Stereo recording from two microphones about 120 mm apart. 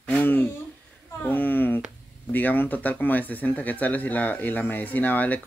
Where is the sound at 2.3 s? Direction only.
15° left (ahead or behind).